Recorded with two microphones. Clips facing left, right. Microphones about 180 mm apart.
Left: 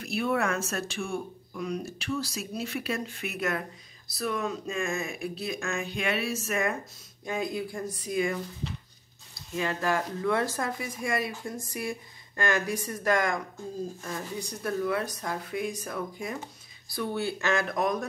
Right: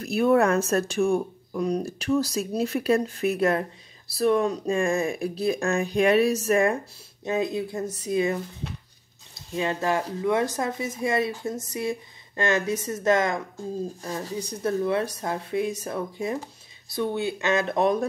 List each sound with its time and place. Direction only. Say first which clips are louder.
0.0 s speech: right 8 dB; 45° right (ahead or behind); by 13.4 s 25° right (ahead or behind)
14.0 s speech: right 4 dB; 35° right (ahead or behind)
14.3 s speech: right 5 dB; 20° right (ahead or behind)